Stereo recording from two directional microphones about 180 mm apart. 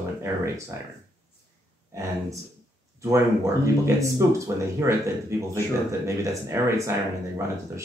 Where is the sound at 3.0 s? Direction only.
15° right (ahead or behind).